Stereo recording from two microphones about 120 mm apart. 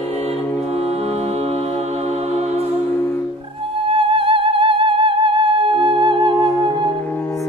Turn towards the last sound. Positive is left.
turn(degrees=-40)  # may be behind; listen again after turning